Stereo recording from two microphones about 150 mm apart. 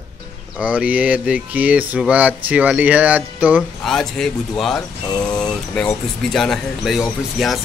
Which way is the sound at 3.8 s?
5° left (ahead or behind).